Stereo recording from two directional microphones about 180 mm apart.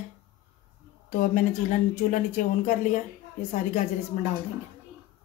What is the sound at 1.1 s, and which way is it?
Speech, 45° left (ahead or behind).